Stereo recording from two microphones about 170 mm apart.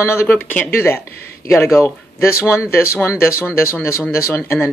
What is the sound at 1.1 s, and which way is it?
Speech, 65° left (ahead or behind).